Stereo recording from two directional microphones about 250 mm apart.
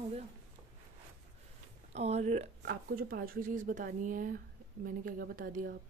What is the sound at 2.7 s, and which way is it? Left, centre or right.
Speech, right.